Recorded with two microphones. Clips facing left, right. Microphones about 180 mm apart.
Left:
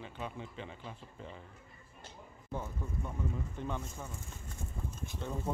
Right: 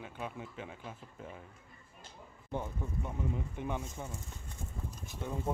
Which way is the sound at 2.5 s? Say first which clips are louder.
Right 2 dB; 20° right (ahead or behind).